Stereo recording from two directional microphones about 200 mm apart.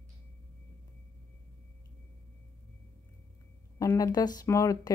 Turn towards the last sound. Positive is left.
turn(degrees=15)  # may be behind; listen again after turning